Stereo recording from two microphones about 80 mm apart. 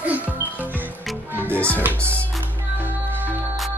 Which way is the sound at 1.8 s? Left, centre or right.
Right.